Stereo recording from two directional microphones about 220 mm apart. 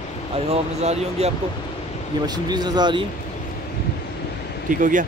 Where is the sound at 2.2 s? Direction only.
20° right (ahead or behind).